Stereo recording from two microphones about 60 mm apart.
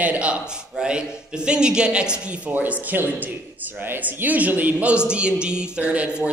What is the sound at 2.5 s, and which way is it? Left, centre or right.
Speech, right.